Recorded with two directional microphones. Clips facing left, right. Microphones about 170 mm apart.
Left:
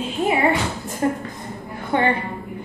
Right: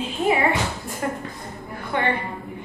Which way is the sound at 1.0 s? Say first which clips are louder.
Left 6 dB; 30° left (ahead or behind).